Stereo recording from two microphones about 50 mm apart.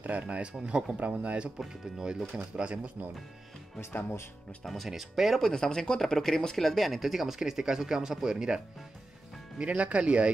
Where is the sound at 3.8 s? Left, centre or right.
Left.